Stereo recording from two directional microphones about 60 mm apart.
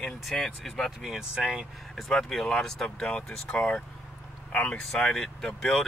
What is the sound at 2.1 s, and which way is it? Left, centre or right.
Speech, centre.